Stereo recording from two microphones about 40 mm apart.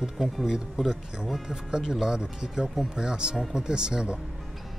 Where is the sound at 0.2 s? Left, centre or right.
Centre.